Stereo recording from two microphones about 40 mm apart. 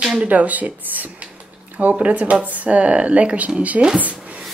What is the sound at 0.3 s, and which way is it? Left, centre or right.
Speech, right.